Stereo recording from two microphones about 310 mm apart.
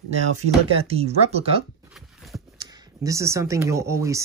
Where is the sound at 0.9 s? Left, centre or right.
Centre.